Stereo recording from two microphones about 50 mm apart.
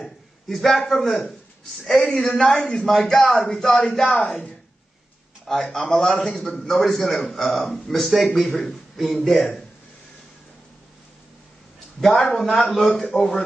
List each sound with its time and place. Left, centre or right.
0.0 s a sound: centre
0.8 s a man's voice: centre
5.5 s a man's voice: centre
12.1 s speech: left
12.4 s speech: centre
12.9 s speech: left